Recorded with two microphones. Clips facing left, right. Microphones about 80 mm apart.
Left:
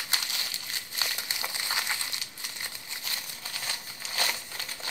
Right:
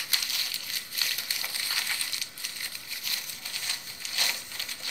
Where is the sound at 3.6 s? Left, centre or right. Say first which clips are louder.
Left 3 dB; left.